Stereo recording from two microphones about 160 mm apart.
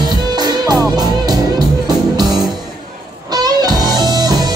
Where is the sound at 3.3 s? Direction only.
25° right (ahead or behind).